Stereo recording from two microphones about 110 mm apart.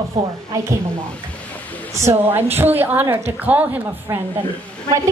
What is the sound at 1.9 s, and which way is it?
A woman's voice, 25° right (ahead or behind).